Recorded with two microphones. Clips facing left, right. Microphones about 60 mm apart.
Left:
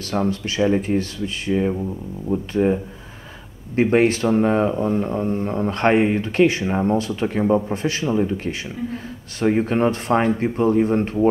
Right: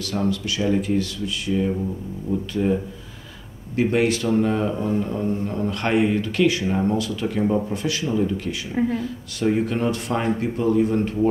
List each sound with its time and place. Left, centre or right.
0.0 s speech: left